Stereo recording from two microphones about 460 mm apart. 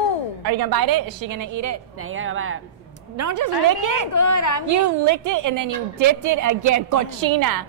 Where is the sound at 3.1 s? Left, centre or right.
Right.